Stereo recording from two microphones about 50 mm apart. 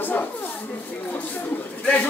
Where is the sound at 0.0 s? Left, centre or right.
Left.